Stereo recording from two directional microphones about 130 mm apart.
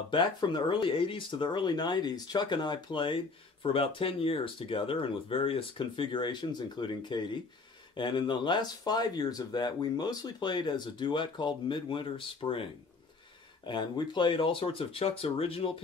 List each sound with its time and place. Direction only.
0.1 s speech: 35° left (ahead or behind)
13.7 s speech: 40° left (ahead or behind)